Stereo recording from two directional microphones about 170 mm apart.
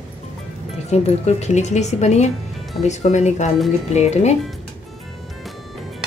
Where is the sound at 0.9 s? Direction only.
40° left (ahead or behind).